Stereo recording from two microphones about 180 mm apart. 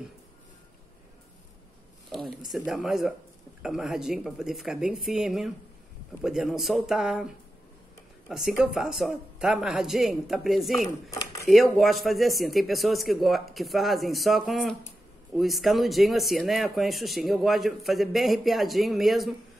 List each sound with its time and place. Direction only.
2.0 s speech: centre (ahead or behind)
8.3 s speech: centre (ahead or behind)
11.1 s a sound: 20° left (ahead or behind)
11.4 s speech: centre (ahead or behind)